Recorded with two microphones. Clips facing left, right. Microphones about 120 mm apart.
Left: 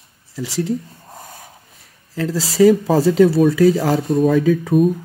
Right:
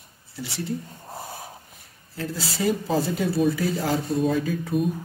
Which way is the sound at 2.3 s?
90° left.